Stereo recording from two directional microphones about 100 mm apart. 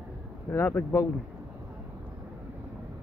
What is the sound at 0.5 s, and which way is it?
Speech, 25° left (ahead or behind).